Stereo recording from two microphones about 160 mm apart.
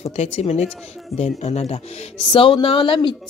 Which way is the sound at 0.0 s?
40° left (ahead or behind).